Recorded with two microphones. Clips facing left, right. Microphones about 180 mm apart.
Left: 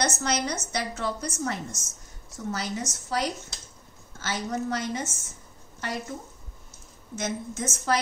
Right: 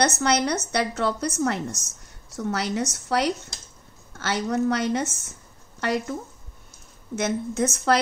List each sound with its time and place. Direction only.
0.0 s a woman's voice: 65° right (ahead or behind)
7.2 s a woman's voice: 65° right (ahead or behind)